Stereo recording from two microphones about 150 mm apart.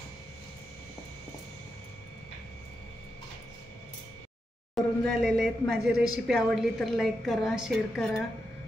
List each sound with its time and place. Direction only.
4.7 s speech: centre (ahead or behind)